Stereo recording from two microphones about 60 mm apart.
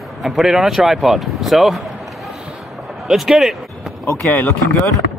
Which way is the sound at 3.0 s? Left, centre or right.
Centre.